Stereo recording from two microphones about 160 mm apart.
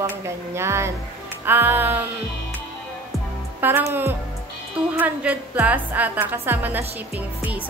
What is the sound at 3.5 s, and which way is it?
A woman's voice, 15° right (ahead or behind).